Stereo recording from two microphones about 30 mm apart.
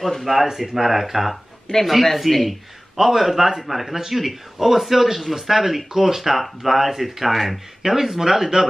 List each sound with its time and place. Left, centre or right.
0.0 s speech: centre
1.7 s speech: left
2.1 s speech: centre